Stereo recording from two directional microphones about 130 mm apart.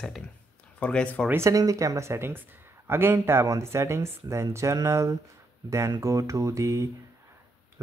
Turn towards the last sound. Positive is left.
turn(degrees=-25)  # may be behind; listen again after turning